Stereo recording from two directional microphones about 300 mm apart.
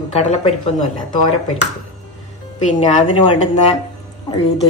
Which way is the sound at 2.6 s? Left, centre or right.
Left.